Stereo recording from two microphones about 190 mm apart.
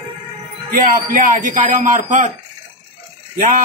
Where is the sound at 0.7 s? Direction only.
45° right (ahead or behind).